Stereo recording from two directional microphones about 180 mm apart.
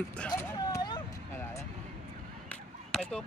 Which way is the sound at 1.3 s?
15° left (ahead or behind).